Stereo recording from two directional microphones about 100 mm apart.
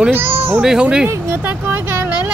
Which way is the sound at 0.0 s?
20° right (ahead or behind).